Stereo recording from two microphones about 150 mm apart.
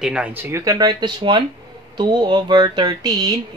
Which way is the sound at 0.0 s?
5° right (ahead or behind).